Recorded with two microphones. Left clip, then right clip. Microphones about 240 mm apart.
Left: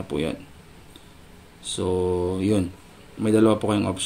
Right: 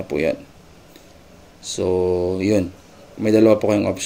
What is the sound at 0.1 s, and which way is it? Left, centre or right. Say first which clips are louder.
Speech: right 7 dB; left.